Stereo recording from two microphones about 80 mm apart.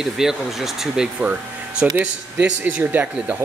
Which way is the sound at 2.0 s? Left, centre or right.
Right.